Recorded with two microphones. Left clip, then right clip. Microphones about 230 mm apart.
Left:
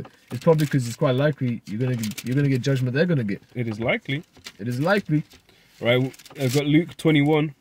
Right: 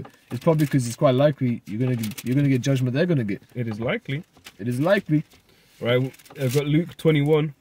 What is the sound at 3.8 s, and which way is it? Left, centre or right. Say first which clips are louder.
Speech: left 3 dB; centre.